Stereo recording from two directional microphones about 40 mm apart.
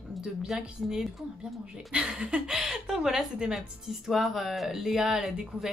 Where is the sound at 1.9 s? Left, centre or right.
Right.